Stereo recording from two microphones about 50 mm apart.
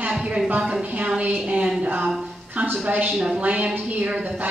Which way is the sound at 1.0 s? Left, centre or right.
Right.